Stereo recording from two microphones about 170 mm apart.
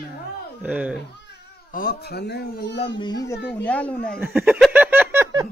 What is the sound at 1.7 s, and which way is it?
Speech, 65° left (ahead or behind).